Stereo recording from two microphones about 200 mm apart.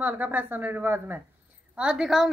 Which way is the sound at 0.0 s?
10° right (ahead or behind).